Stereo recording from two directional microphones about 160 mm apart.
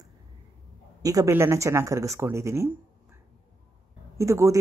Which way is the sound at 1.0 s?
20° right (ahead or behind).